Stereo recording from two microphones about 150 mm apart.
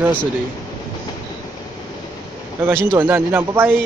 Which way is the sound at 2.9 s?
15° right (ahead or behind).